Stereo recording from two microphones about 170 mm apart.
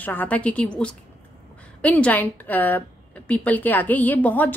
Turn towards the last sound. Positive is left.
turn(degrees=10)  # may be behind; listen again after turning